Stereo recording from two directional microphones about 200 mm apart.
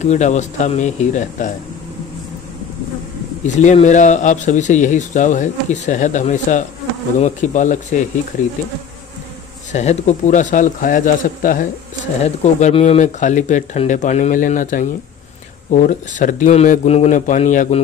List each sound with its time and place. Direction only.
0.0 s speech: 35° left (ahead or behind)
3.4 s speech: 35° left (ahead or behind)
9.7 s speech: 35° left (ahead or behind)